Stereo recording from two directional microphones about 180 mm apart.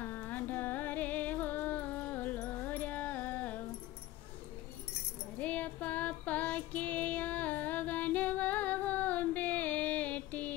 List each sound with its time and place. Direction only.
0.0 s music: 10° left (ahead or behind)
5.4 s child singing: 5° left (ahead or behind)